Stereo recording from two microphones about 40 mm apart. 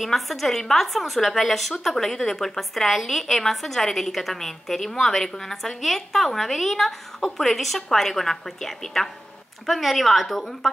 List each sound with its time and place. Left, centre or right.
0.0 s a woman's voice: centre